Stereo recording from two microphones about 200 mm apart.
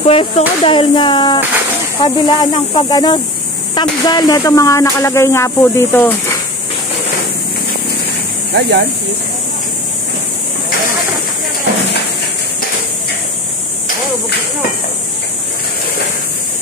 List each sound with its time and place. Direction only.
0.0 s speech: 25° left (ahead or behind)
3.7 s a sound: 20° left (ahead or behind)
8.5 s speech: 55° right (ahead or behind)